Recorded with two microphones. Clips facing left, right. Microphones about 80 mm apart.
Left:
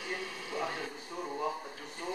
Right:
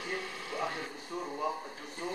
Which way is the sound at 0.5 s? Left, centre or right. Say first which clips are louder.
Even; centre.